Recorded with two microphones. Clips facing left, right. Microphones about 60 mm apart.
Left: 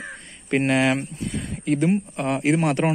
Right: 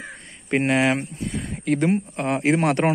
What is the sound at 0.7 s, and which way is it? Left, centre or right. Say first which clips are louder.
Speech: even; right.